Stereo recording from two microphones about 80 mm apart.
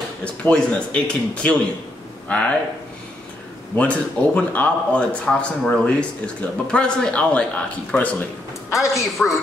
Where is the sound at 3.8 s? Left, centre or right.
Centre.